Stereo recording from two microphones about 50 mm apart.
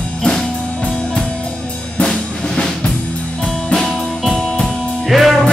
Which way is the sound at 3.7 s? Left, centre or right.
Centre.